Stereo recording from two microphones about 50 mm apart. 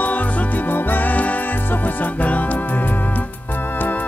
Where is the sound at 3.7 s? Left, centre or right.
Left.